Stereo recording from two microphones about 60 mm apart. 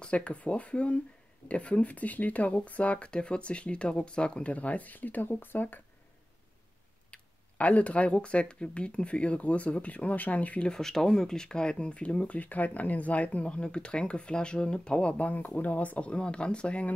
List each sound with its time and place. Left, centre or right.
0.0 s speech: centre
7.1 s speech: left
10.7 s speech: centre